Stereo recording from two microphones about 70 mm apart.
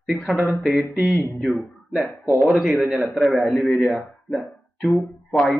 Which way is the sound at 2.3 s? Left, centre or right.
Centre.